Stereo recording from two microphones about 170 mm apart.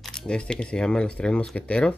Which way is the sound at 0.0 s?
5° left (ahead or behind).